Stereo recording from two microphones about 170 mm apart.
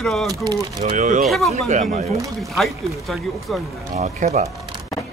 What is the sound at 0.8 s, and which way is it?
Speech, 45° right (ahead or behind).